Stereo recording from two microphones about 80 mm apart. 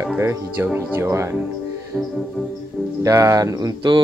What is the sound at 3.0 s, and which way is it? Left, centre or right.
Speech, right.